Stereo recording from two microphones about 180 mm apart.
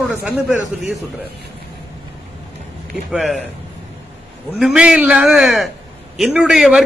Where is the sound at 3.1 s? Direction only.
Centre (ahead or behind).